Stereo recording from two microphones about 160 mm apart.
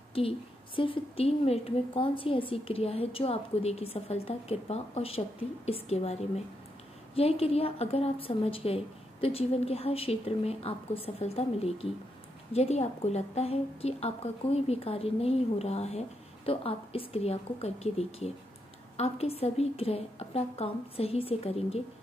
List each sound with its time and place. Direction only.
0.7 s a woman's voice: 35° left (ahead or behind)